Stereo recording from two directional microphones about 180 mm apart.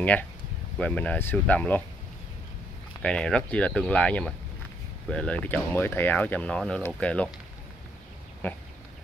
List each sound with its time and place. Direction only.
0.0 s speech: 10° left (ahead or behind)
3.0 s speech: 5° left (ahead or behind)
8.4 s speech: 10° left (ahead or behind)